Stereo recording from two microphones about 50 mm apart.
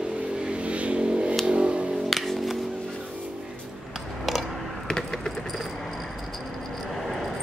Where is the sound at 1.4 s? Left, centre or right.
Right.